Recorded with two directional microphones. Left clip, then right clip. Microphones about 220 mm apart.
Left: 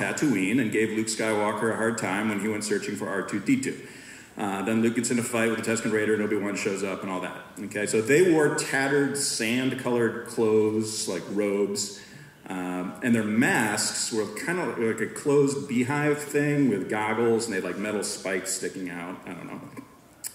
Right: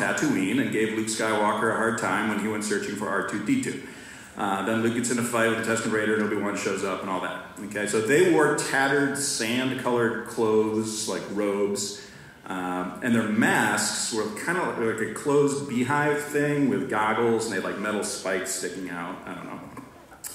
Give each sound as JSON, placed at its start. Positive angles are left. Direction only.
{"t": 0.0, "sound": "speech", "side_deg": 35}
{"t": 2.6, "sound": "speech", "side_deg": 35}